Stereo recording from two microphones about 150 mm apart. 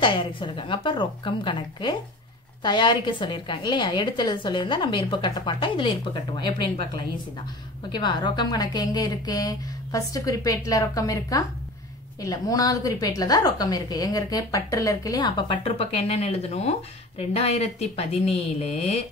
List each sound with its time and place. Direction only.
0.0 s a woman's voice: 35° left (ahead or behind)
7.9 s a woman's voice: 30° left (ahead or behind); by 18.9 s 45° left (ahead or behind)